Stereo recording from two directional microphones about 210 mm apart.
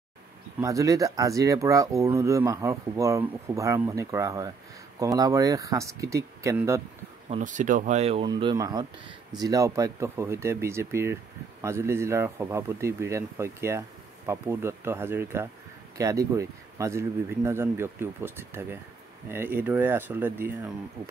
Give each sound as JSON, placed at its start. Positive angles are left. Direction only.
{"t": 0.6, "sound": "speech", "side_deg": -15}
{"t": 7.2, "sound": "speech", "side_deg": -35}